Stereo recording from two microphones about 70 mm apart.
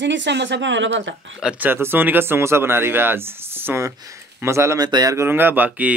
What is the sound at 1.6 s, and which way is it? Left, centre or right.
Speech, right.